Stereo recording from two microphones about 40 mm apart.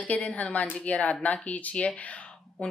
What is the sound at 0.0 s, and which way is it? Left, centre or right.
Speech, left.